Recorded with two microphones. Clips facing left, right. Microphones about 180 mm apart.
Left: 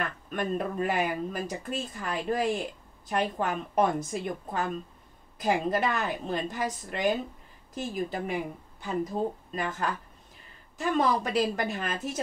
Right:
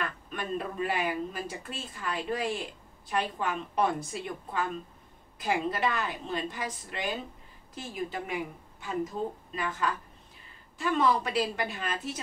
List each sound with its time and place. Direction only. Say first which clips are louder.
0.3 s a woman's voice: left 6 dB; 45° left (ahead or behind)